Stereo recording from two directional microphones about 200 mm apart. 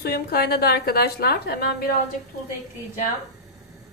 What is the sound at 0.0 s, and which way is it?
A woman's voice, 50° left (ahead or behind).